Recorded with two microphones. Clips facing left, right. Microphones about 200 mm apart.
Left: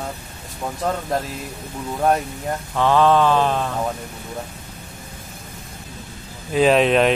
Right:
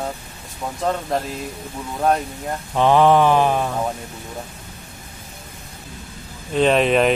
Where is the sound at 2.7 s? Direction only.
15° right (ahead or behind).